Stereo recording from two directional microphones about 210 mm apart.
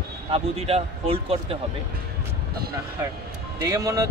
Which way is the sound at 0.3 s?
30° right (ahead or behind).